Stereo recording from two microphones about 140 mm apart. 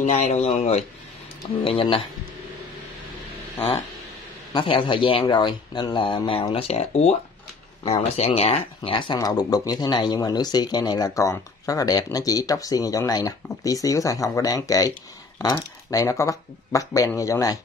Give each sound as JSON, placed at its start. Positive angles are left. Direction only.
{"t": 0.0, "sound": "speech", "side_deg": 50}
{"t": 4.6, "sound": "speech", "side_deg": 35}
{"t": 15.9, "sound": "speech", "side_deg": 25}